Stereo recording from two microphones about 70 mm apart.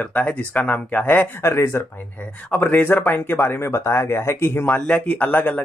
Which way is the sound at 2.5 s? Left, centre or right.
Left.